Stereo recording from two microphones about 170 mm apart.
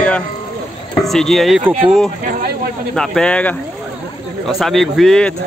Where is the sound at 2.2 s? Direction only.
55° right (ahead or behind).